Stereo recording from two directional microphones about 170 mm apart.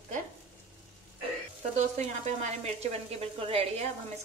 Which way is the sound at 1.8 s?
40° right (ahead or behind).